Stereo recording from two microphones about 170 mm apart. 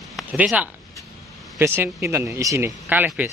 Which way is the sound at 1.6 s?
15° right (ahead or behind).